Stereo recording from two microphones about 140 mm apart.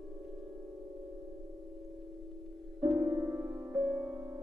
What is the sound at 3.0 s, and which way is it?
Music, 15° right (ahead or behind).